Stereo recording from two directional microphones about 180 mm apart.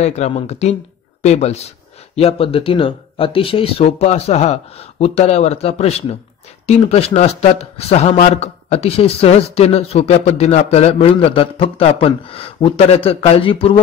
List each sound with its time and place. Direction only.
0.0 s a man's voice: 40° left (ahead or behind)